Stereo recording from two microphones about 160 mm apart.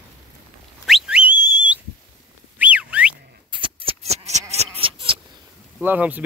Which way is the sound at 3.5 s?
35° right (ahead or behind).